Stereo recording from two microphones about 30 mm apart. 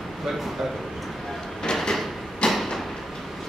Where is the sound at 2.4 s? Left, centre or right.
Left.